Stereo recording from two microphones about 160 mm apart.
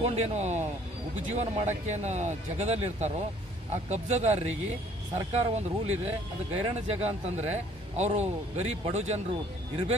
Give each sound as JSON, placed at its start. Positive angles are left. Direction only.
{"t": 0.0, "sound": "speech", "side_deg": -40}